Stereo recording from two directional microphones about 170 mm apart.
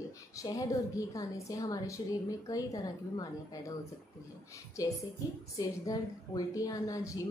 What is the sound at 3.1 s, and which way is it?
Speech, 20° left (ahead or behind).